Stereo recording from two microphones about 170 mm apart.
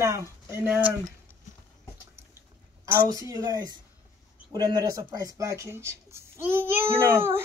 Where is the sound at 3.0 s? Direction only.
20° right (ahead or behind).